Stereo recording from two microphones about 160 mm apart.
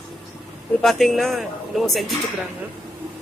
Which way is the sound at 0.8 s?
Centre (ahead or behind).